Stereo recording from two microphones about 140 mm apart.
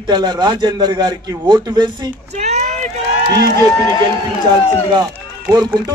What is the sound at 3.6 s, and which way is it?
Speech, 20° left (ahead or behind).